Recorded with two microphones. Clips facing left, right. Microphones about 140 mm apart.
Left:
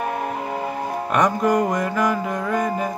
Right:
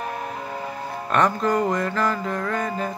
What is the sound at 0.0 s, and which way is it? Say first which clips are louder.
Tick-tock: left 5 dB; 50° left (ahead or behind).